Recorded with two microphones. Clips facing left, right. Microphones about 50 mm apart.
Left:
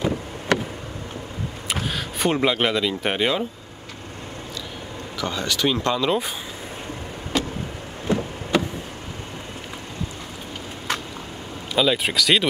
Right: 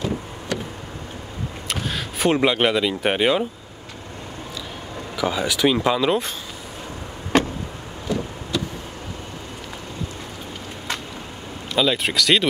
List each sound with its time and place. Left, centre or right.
0.5 s a sound: left
1.7 s speech: centre
5.2 s speech: centre
7.3 s vehicle: right
8.1 s a sound: left
11.7 s speech: centre